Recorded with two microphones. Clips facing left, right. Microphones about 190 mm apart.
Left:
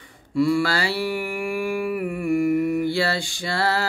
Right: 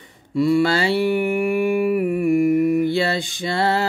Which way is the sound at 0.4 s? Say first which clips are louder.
Right 3 dB; 20° right (ahead or behind).